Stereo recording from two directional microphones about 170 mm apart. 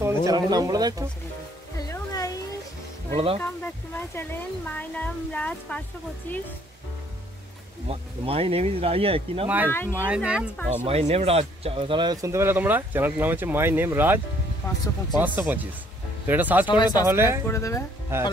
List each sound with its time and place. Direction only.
0.0 s speech: 15° right (ahead or behind)
1.8 s music: 20° left (ahead or behind)
3.3 s speech: 10° left (ahead or behind)
7.9 s speech: 35° right (ahead or behind)
9.8 s speech: 10° right (ahead or behind)
10.9 s speech: 40° right (ahead or behind); by 14.2 s 10° right (ahead or behind)
14.6 s speech: 15° left (ahead or behind)
15.1 s speech: 10° right (ahead or behind)
16.6 s speech: 25° left (ahead or behind)
17.0 s speech: 15° right (ahead or behind)
17.5 s speech: 20° left (ahead or behind)
18.1 s speech: 15° right (ahead or behind)